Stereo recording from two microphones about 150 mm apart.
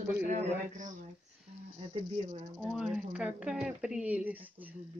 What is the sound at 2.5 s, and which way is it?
Speech, 5° right (ahead or behind).